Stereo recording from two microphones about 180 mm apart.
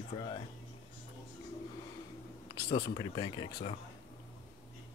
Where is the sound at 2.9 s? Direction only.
25° left (ahead or behind).